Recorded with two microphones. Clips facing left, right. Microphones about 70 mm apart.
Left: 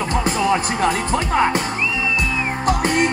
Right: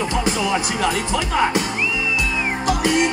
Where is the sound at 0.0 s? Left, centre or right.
Left.